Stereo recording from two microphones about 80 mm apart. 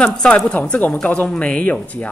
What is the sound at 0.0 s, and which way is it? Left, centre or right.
Speech, centre.